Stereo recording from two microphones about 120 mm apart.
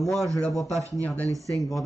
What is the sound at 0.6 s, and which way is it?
A man's voice, 25° right (ahead or behind).